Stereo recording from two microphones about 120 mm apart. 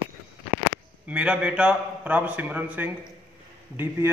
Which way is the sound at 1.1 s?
10° right (ahead or behind).